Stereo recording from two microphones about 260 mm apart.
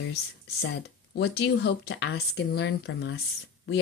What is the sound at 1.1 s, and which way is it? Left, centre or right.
Speech, left.